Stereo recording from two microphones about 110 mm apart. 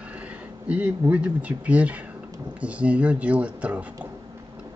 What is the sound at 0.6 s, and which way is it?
Speech, 10° right (ahead or behind).